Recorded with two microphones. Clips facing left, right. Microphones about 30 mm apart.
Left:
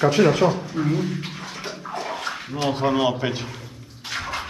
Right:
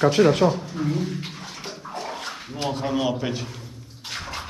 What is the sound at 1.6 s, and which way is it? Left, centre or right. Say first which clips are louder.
Bathtub: left 3 dB; left.